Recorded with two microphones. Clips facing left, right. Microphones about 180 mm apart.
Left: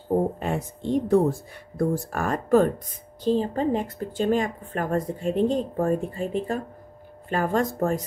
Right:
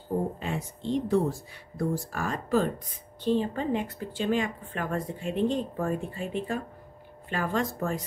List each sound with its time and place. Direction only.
0.4 s speech: 50° left (ahead or behind)
3.3 s speech: 35° left (ahead or behind)